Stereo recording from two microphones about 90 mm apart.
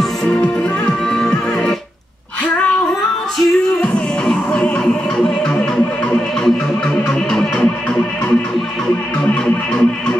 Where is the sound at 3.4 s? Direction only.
10° left (ahead or behind).